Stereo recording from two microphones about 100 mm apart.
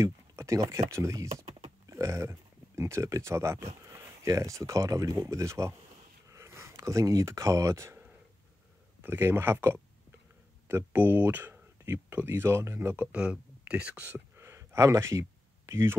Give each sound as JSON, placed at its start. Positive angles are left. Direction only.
{"t": 0.0, "sound": "speech", "side_deg": -30}
{"t": 9.0, "sound": "speech", "side_deg": -25}
{"t": 13.0, "sound": "speech", "side_deg": -10}